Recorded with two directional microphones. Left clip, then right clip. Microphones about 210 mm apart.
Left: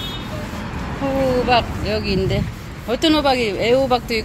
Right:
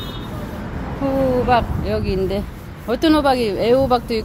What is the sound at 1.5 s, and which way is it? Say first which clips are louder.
Speech: even; 15° right (ahead or behind).